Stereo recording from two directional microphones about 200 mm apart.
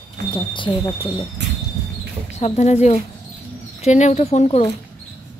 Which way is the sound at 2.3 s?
35° left (ahead or behind).